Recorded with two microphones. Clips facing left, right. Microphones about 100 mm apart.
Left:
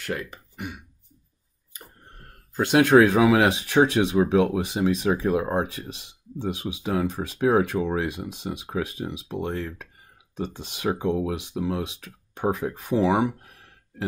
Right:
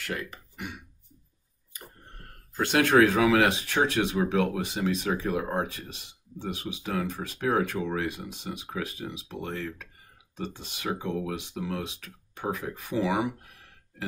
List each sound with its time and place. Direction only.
0.0 s throat clearing: 20° left (ahead or behind)
2.5 s speech: 15° left (ahead or behind); by 13.3 s 30° left (ahead or behind)